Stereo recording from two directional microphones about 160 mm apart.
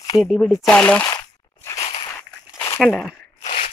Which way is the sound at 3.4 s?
40° left (ahead or behind).